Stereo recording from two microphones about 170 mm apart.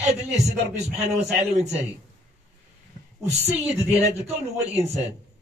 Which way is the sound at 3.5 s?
10° right (ahead or behind).